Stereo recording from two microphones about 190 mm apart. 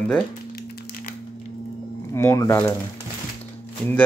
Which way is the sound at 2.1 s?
15° left (ahead or behind).